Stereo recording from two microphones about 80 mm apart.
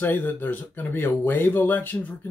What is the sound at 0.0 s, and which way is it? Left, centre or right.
Speech, left.